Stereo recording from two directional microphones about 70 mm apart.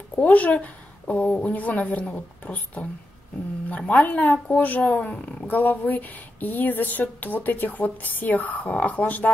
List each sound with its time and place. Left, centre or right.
0.1 s speech: left